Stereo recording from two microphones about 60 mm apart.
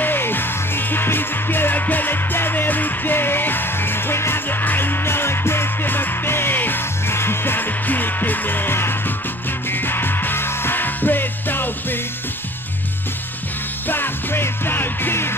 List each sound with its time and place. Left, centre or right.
0.0 s music: left
13.8 s music: left